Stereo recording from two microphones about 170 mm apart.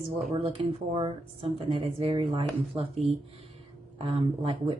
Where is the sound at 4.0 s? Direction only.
30° right (ahead or behind).